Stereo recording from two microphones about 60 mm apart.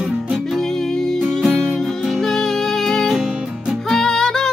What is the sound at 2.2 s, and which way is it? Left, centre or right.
Music, centre.